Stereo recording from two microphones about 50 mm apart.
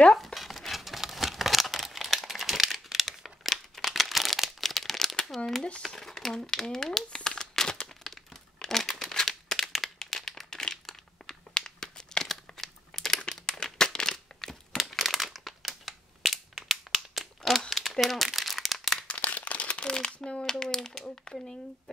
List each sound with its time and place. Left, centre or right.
0.1 s crumpling: centre
5.8 s speech: centre
7.2 s crumpling: centre
17.4 s a sound: centre
18.0 s crumpling: centre
19.0 s crumpling: left; by 21.9 s centre